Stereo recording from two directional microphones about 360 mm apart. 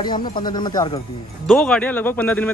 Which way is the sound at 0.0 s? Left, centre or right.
Centre.